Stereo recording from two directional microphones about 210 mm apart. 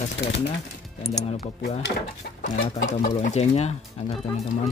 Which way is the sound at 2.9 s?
35° left (ahead or behind).